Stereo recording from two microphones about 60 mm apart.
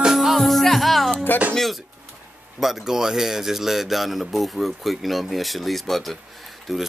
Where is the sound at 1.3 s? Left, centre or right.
Left.